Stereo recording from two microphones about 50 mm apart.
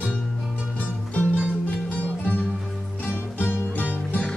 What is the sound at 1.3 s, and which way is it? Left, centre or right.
Music, right.